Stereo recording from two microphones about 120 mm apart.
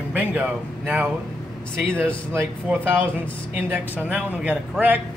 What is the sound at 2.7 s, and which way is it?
Speech, 15° right (ahead or behind).